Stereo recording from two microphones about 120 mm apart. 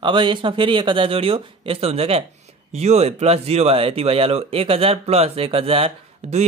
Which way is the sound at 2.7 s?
65° right (ahead or behind).